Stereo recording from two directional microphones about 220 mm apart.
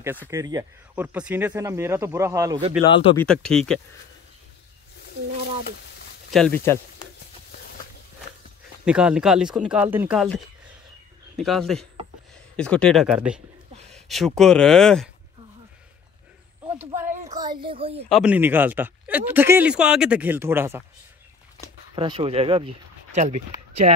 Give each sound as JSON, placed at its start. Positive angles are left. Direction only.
{"t": 0.3, "sound": "speech", "side_deg": -15}
{"t": 2.9, "sound": "speech", "side_deg": 20}
{"t": 3.2, "sound": "speech", "side_deg": 5}
{"t": 6.3, "sound": "speech", "side_deg": 5}
{"t": 8.8, "sound": "speech", "side_deg": -5}
{"t": 16.7, "sound": "a child's voice", "side_deg": -10}
{"t": 18.0, "sound": "speech", "side_deg": 0}
{"t": 21.9, "sound": "speech", "side_deg": -25}